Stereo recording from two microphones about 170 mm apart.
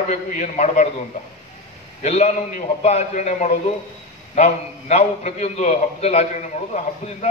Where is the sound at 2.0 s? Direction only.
40° left (ahead or behind).